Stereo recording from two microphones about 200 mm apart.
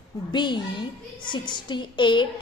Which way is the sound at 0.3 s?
25° left (ahead or behind).